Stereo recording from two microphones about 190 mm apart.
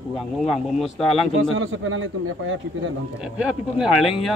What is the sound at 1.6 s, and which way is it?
Speech, 90° right.